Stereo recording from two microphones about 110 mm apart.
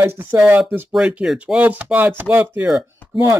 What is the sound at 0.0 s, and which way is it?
Speech, 20° right (ahead or behind).